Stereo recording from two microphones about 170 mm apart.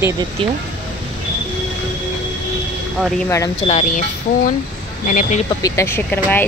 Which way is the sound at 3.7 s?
35° left (ahead or behind).